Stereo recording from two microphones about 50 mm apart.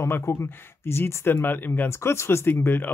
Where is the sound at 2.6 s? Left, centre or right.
Left.